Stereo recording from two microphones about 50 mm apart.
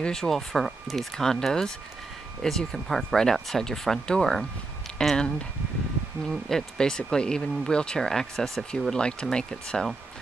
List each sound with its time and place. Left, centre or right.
0.0 s speech: centre
6.2 s speech: centre